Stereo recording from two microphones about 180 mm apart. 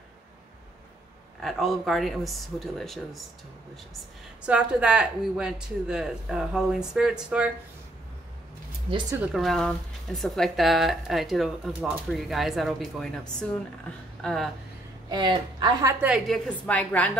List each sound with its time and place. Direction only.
1.4 s speech: centre (ahead or behind)
4.4 s speech: 5° right (ahead or behind)
9.3 s speech: centre (ahead or behind)
15.0 s a woman's voice: 25° right (ahead or behind)
16.3 s a woman's voice: 5° left (ahead or behind)